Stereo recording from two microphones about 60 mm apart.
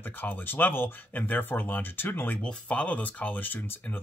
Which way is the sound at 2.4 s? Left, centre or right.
Left.